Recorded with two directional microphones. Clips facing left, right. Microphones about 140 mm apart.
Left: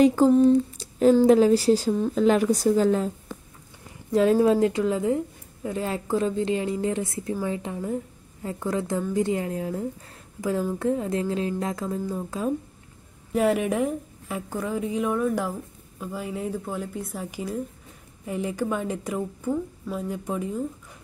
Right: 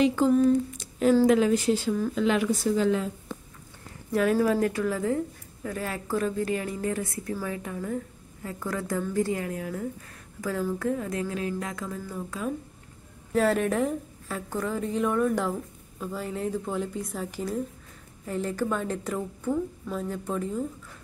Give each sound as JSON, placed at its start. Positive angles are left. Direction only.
{"t": 0.0, "sound": "speech", "side_deg": 40}
{"t": 0.3, "sound": "humming", "side_deg": 30}
{"t": 1.2, "sound": "speech", "side_deg": 35}
{"t": 4.1, "sound": "a woman's voice", "side_deg": 25}
{"t": 13.3, "sound": "speech", "side_deg": 10}